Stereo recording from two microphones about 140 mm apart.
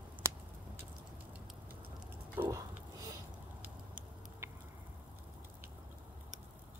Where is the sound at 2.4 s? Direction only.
25° right (ahead or behind).